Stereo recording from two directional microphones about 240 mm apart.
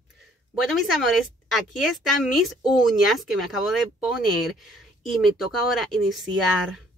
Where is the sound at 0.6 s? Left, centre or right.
Centre.